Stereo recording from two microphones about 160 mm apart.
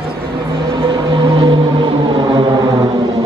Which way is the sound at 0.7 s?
30° right (ahead or behind).